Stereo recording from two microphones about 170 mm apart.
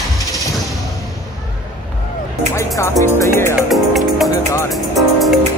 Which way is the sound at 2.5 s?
15° left (ahead or behind).